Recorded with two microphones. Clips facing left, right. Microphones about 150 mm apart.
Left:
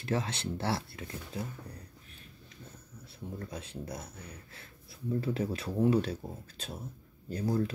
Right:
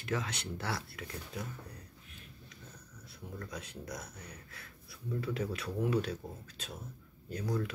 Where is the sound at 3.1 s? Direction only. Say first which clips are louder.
Left 3 dB; 30° left (ahead or behind).